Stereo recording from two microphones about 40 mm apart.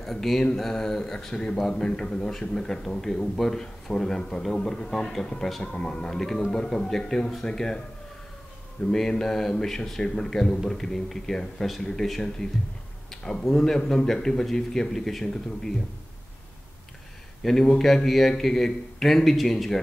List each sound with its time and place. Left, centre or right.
0.0 s mantra: centre
0.6 s a man's voice: centre
8.9 s speech: centre
17.4 s speech: centre